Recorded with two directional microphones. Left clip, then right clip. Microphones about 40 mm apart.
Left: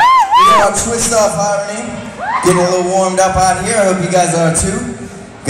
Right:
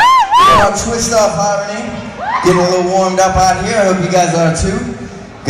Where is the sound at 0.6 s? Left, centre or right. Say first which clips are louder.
Even; left.